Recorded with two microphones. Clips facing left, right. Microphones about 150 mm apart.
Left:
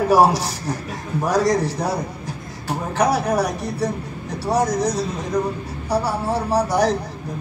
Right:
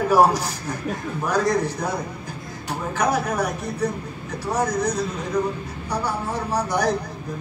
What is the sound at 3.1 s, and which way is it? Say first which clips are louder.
Speech: left 3 dB; 35° left (ahead or behind).